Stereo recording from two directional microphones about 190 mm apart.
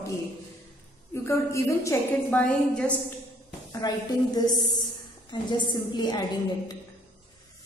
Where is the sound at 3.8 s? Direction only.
20° left (ahead or behind).